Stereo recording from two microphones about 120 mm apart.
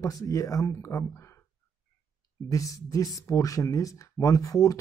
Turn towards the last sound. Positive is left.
turn(degrees=30)  # may be behind; listen again after turning